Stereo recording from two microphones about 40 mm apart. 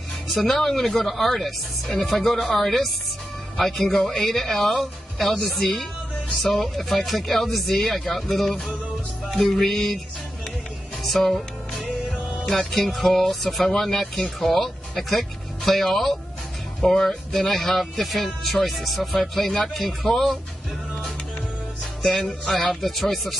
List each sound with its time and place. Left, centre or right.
0.5 s speech: centre
11.1 s speech: centre
22.0 s music: centre
22.5 s speech: centre